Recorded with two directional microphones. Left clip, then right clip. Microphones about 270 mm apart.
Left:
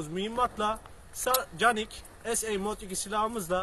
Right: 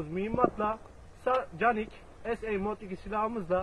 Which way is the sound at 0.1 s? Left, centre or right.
Left.